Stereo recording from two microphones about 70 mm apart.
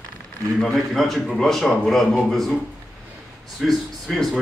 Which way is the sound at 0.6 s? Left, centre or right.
Centre.